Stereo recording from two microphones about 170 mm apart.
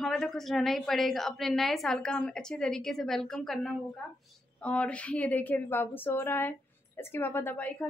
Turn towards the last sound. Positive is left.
turn(degrees=10)  # may be behind; listen again after turning